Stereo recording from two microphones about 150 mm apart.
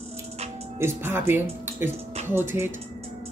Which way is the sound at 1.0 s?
15° right (ahead or behind).